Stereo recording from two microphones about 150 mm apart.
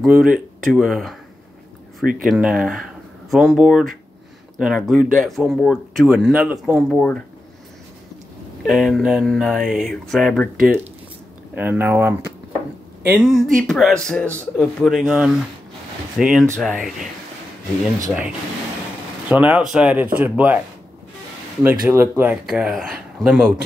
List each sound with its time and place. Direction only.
0.0 s speech: 5° right (ahead or behind)
2.2 s speech: 5° right (ahead or behind)
7.0 s speech: 10° left (ahead or behind)
8.6 s speech: centre (ahead or behind)
11.5 s speech: 10° right (ahead or behind)
19.2 s speech: 10° right (ahead or behind)
21.6 s speech: 15° right (ahead or behind)
22.5 s speech: 5° right (ahead or behind)